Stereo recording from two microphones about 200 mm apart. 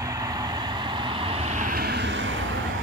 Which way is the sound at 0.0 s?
15° right (ahead or behind).